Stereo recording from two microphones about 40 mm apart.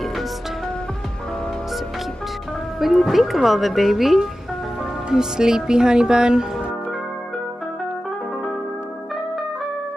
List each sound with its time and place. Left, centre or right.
2.8 s speech: centre